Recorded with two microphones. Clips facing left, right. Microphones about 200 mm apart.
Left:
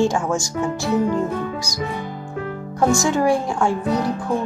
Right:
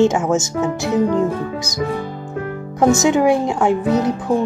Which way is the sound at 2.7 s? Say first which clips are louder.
Right 4 dB; 20° right (ahead or behind).